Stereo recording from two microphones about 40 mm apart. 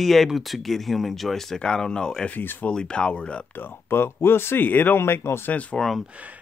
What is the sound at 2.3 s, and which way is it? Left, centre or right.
Speech, left.